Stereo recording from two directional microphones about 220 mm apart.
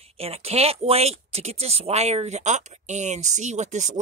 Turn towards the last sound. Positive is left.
turn(degrees=-30)  # may be behind; listen again after turning